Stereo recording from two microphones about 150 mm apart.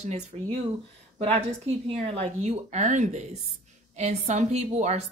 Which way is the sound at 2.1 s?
45° right (ahead or behind).